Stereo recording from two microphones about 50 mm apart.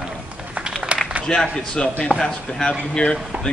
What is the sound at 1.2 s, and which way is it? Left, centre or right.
Speech, centre.